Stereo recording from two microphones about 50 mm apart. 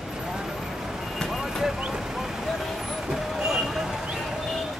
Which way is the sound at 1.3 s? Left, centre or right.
Centre.